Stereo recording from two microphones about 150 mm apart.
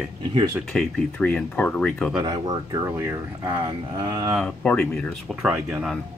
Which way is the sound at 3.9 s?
30° right (ahead or behind).